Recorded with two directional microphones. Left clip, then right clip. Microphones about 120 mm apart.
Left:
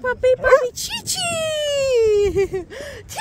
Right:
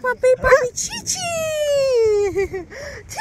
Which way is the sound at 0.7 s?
70° left (ahead or behind).